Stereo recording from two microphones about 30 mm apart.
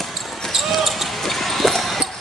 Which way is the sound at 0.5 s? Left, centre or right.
Centre.